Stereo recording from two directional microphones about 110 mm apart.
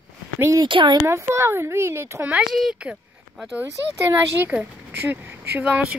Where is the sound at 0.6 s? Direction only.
45° right (ahead or behind).